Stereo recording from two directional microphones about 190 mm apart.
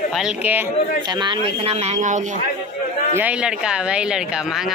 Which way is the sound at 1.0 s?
25° right (ahead or behind).